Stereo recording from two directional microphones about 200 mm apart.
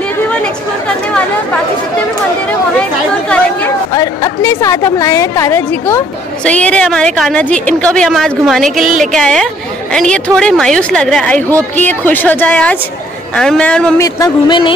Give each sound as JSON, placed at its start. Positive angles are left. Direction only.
{"t": 0.4, "sound": "a woman's voice", "side_deg": 5}
{"t": 2.8, "sound": "a woman's voice", "side_deg": 5}
{"t": 3.9, "sound": "a woman's voice", "side_deg": 15}
{"t": 8.7, "sound": "a woman's voice", "side_deg": -40}
{"t": 9.0, "sound": "a woman's voice", "side_deg": 0}
{"t": 14.0, "sound": "speech", "side_deg": 20}